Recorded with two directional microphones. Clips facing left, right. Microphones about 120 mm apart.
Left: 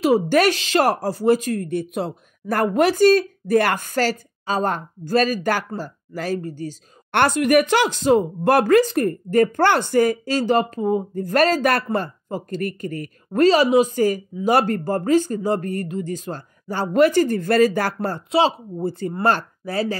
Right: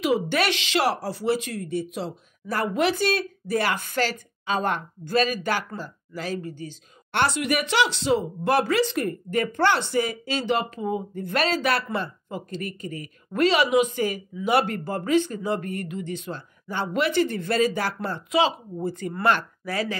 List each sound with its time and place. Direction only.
0.0 s speech: 45° left (ahead or behind)
7.1 s speech: 50° left (ahead or behind)
13.4 s speech: 35° left (ahead or behind)